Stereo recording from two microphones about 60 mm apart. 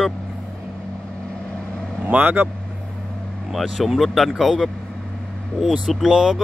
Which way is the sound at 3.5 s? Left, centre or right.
Centre.